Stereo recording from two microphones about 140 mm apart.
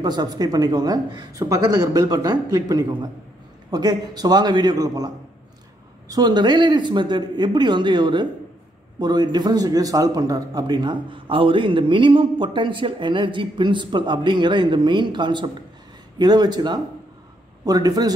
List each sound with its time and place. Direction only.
0.0 s speech: 30° right (ahead or behind)